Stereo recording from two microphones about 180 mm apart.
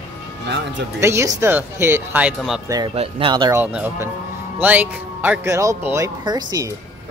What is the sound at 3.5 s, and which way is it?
Speech, 10° right (ahead or behind).